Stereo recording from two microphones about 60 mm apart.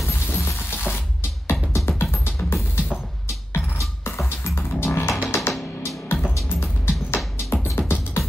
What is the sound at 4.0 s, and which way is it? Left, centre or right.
Music, left.